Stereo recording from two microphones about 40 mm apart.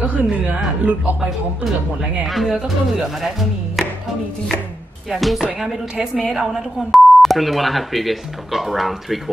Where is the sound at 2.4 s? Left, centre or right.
Centre.